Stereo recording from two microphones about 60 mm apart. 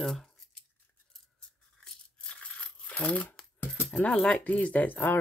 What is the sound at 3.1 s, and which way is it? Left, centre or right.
Speech, left.